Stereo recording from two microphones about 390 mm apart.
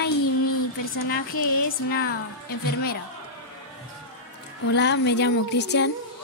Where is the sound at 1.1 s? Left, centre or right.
Left.